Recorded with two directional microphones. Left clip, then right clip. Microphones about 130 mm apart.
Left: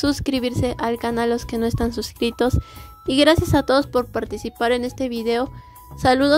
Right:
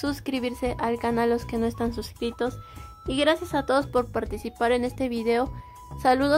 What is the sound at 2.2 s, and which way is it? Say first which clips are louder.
Speech: left 8 dB; 50° left (ahead or behind).